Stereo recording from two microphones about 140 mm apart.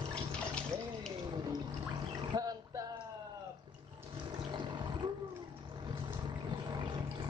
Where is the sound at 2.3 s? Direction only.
25° right (ahead or behind).